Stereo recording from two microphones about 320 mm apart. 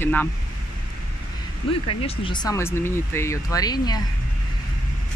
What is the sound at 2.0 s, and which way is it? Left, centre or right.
Speech, centre.